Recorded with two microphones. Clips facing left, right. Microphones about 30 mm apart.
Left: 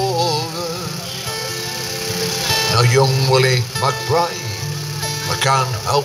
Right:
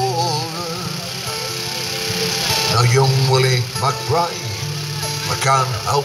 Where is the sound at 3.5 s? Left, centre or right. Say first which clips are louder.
Left 1 dB; left.